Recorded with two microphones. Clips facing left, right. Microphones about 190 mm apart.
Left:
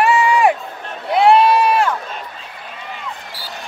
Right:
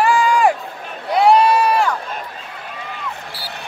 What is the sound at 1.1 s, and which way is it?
Crowd, centre (ahead or behind).